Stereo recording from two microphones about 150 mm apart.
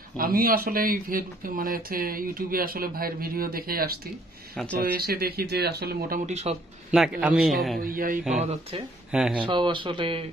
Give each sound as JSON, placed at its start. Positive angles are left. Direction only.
{"t": 0.2, "sound": "speech", "side_deg": -75}
{"t": 4.9, "sound": "speech", "side_deg": -90}
{"t": 6.2, "sound": "speech", "side_deg": -45}
{"t": 6.9, "sound": "a man's voice", "side_deg": -5}
{"t": 7.8, "sound": "speech", "side_deg": -70}
{"t": 8.4, "sound": "speech", "side_deg": -40}
{"t": 9.1, "sound": "a man's voice", "side_deg": -5}
{"t": 9.4, "sound": "speech", "side_deg": -35}